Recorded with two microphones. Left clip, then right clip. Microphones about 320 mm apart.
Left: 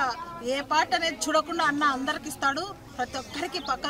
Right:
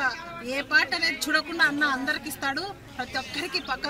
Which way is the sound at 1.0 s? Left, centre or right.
Centre.